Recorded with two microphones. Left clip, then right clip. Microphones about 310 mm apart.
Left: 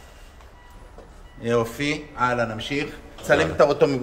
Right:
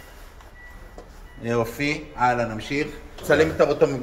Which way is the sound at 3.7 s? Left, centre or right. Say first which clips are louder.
Left 1 dB; left.